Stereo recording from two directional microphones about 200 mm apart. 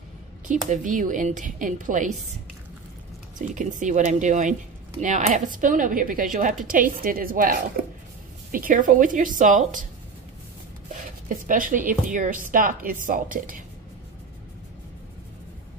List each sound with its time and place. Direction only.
0.5 s a woman's voice: 40° right (ahead or behind)
3.3 s a woman's voice: 40° right (ahead or behind)
11.2 s a woman's voice: 40° right (ahead or behind)